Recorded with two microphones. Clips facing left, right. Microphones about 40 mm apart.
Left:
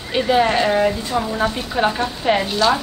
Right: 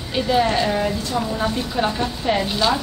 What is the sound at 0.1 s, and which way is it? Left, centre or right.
A woman's voice, centre.